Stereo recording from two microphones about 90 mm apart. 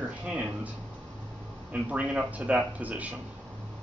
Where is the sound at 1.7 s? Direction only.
15° right (ahead or behind).